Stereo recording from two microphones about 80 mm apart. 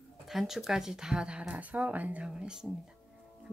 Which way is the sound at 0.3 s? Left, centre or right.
Centre.